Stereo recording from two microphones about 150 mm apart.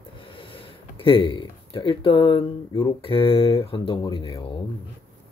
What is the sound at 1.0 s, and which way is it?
Speech, 35° left (ahead or behind).